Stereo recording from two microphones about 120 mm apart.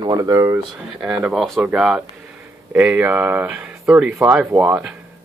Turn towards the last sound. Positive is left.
turn(degrees=-10)  # may be behind; listen again after turning